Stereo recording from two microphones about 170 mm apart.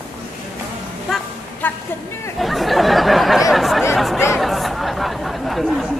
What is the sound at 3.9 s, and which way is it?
Chatter, centre (ahead or behind).